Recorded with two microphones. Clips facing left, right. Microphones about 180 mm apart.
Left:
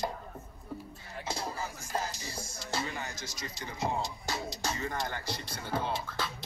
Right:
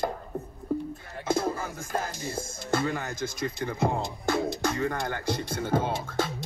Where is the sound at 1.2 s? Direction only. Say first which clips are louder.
Right 10 dB; 50° right (ahead or behind).